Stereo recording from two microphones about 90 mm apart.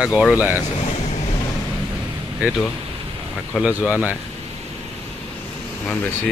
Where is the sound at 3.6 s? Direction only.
15° right (ahead or behind).